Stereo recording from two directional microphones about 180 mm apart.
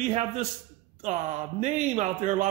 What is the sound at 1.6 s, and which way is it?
Speech, 40° right (ahead or behind).